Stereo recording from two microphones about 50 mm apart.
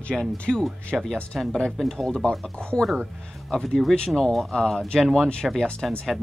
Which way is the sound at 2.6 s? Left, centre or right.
Centre.